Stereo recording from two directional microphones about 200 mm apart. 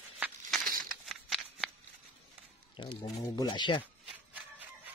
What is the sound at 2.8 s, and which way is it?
Speech, 25° left (ahead or behind).